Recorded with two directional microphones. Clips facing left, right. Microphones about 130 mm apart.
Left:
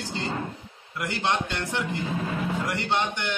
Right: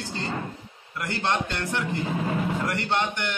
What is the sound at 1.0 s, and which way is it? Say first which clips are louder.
A man's voice: even; 15° left (ahead or behind).